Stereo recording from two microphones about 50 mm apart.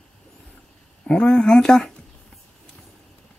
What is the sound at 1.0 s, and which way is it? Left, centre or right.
Speech, centre.